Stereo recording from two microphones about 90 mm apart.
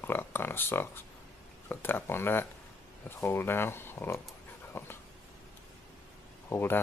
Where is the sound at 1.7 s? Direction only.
25° left (ahead or behind).